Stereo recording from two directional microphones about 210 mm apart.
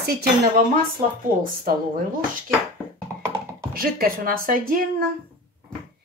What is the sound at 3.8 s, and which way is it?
Speech, 45° right (ahead or behind).